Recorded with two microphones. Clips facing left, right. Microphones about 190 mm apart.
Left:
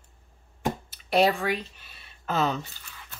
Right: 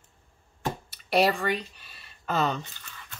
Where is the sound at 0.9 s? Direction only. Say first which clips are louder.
Left 1 dB; centre (ahead or behind).